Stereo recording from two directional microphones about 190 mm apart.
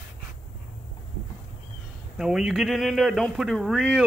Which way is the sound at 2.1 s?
5° right (ahead or behind).